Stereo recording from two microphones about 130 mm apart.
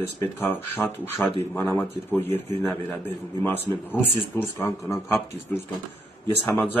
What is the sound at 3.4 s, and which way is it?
Speech, 15° left (ahead or behind).